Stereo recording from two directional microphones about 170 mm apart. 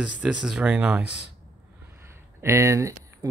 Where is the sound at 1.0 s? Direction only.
90° left.